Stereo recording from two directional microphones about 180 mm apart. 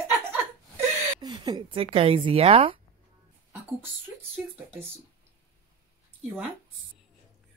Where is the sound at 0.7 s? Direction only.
20° right (ahead or behind).